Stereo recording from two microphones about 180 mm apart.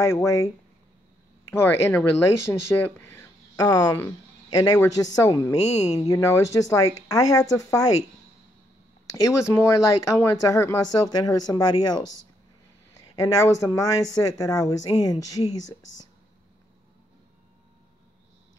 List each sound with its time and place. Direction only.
0.0 s speech: 15° left (ahead or behind)
1.5 s speech: 15° left (ahead or behind)
9.1 s speech: 15° left (ahead or behind)
13.1 s speech: 15° left (ahead or behind)